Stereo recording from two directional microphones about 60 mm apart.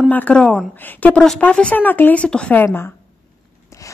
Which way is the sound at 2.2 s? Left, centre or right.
Centre.